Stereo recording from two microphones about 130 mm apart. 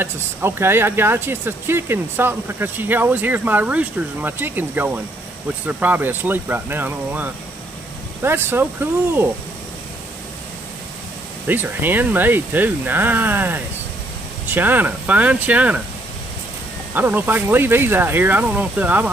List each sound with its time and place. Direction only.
0.0 s speech: 20° right (ahead or behind)
11.4 s speech: 15° right (ahead or behind)
16.9 s speech: 15° right (ahead or behind)